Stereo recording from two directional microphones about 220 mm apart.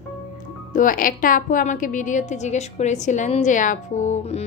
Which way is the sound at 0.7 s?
40° left (ahead or behind).